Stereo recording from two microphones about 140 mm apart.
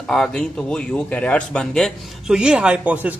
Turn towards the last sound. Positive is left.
turn(degrees=-10)  # may be behind; listen again after turning